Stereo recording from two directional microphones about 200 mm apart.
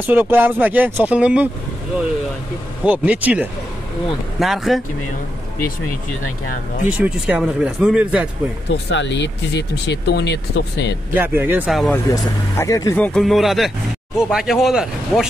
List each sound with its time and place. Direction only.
0.0 s speech: 10° right (ahead or behind)
2.8 s speech: 5° right (ahead or behind)
6.9 s speech: 5° right (ahead or behind)
8.6 s speech: 65° left (ahead or behind)
11.1 s speech: 10° right (ahead or behind)
12.5 s speech: 15° left (ahead or behind); by 15.2 s centre (ahead or behind)